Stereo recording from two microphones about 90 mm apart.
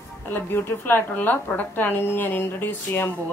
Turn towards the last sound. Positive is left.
turn(degrees=20)  # may be behind; listen again after turning